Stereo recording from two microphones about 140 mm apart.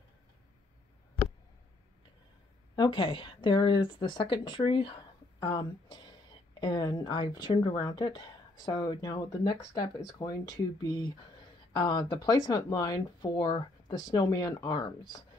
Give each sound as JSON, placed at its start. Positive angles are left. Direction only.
{"t": 2.7, "sound": "speech", "side_deg": 35}